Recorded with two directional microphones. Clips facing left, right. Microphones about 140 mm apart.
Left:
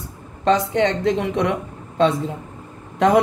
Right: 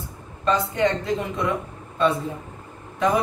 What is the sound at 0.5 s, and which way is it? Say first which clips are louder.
A woman's voice: left 4 dB; 90° left.